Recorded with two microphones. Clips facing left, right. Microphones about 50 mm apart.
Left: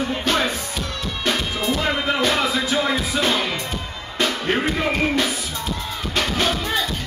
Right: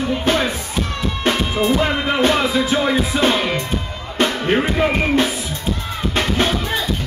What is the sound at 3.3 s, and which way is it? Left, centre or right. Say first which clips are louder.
Music: right 3 dB; right.